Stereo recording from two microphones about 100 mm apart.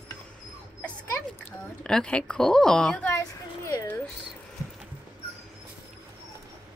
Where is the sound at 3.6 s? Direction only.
25° left (ahead or behind).